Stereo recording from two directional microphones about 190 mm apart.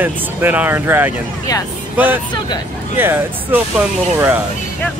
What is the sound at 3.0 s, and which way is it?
Speech, 10° right (ahead or behind).